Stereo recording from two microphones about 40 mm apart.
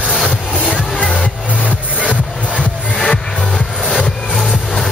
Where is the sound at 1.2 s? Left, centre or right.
Left.